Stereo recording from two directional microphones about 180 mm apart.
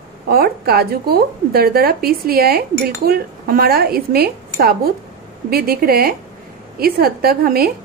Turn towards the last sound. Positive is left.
turn(degrees=-55)  # may be behind; listen again after turning